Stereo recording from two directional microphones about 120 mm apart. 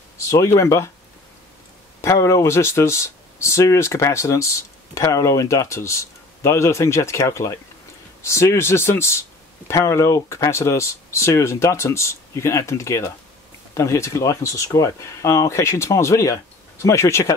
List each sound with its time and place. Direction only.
0.3 s speech: 25° left (ahead or behind)
2.0 s speech: 25° left (ahead or behind)